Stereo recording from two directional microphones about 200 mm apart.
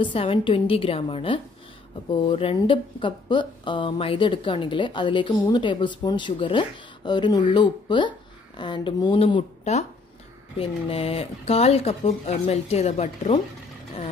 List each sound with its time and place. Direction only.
0.0 s speech: 25° left (ahead or behind)